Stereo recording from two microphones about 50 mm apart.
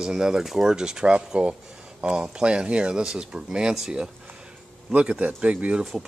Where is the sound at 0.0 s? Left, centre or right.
Centre.